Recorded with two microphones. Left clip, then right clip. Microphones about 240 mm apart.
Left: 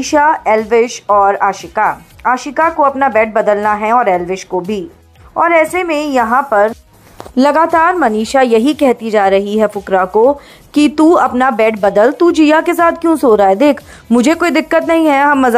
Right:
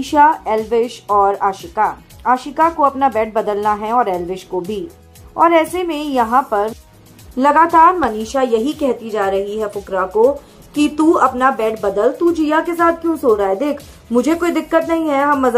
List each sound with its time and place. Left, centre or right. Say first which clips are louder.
0.1 s speech: left 2 dB; centre
7.3 s speech: left 1 dB; left
10.7 s speech: left 5 dB; left